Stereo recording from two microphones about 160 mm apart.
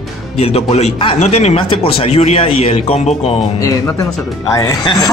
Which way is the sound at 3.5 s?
20° left (ahead or behind).